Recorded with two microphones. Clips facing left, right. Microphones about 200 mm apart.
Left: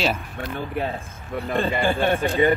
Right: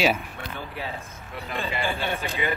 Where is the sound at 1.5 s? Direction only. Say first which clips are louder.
Left 7 dB; 50° left (ahead or behind).